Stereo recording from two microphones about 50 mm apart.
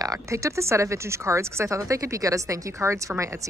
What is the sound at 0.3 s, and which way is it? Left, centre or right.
Speech, right.